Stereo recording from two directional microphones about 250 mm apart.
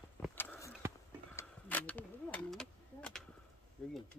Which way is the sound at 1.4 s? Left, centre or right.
Centre.